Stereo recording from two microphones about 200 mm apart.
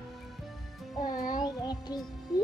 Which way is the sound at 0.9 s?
20° left (ahead or behind).